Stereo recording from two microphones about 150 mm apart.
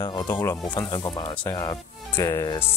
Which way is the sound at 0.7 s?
20° left (ahead or behind).